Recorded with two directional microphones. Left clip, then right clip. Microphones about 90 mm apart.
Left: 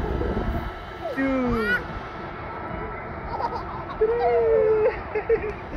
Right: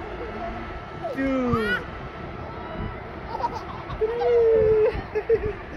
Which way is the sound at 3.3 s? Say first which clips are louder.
Even; 15° right (ahead or behind).